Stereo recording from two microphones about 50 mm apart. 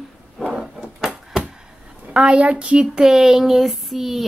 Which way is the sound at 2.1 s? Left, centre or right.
Centre.